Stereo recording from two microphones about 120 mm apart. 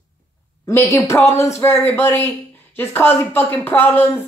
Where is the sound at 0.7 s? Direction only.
20° left (ahead or behind).